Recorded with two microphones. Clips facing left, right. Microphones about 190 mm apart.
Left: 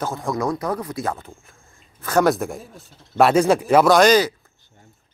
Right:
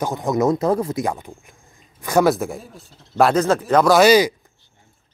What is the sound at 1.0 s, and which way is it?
A man's voice, 15° right (ahead or behind).